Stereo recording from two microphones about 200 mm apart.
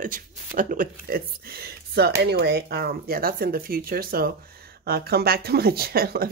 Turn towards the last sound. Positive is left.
turn(degrees=-50)  # may be behind; listen again after turning